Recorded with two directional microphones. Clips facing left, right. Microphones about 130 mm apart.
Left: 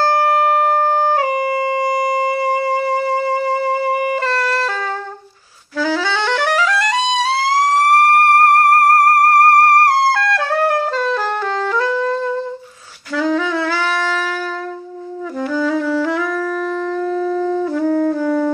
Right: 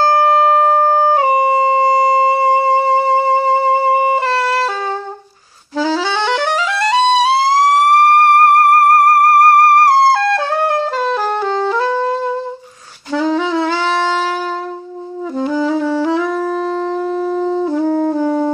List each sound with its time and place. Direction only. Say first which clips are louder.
0.0 s wind instrument: right 3 dB; 25° right (ahead or behind)
5.8 s music: right 2 dB; 25° right (ahead or behind)
10.1 s music: right 2 dB; 25° right (ahead or behind)
13.1 s saxophone: right 2 dB; 25° right (ahead or behind)
15.3 s saxophone: right 2 dB; 25° right (ahead or behind)